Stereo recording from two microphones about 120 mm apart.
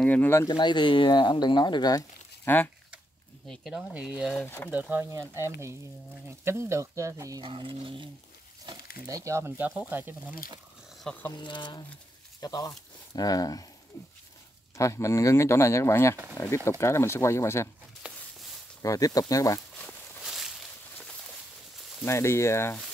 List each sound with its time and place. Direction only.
0.0 s speech: 15° left (ahead or behind)
0.5 s speech: 40° left (ahead or behind)
2.4 s speech: 15° left (ahead or behind)
3.4 s speech: 5° right (ahead or behind)
4.6 s speech: 15° right (ahead or behind)
7.4 s speech: 45° right (ahead or behind)
9.2 s speech: 20° right (ahead or behind)
11.1 s speech: 15° left (ahead or behind)
11.3 s speech: 40° left (ahead or behind)
13.9 s speech: 20° left (ahead or behind)
18.0 s a sound: 10° right (ahead or behind)
18.8 s speech: 30° left (ahead or behind)
19.9 s a sound: centre (ahead or behind)
22.0 s speech: 20° left (ahead or behind)